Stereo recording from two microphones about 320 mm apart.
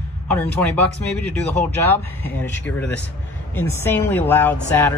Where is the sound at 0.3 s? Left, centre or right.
Centre.